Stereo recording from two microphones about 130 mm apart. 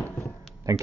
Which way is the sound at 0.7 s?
25° right (ahead or behind).